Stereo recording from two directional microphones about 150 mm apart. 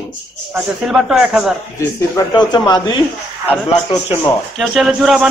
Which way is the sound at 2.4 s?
30° left (ahead or behind).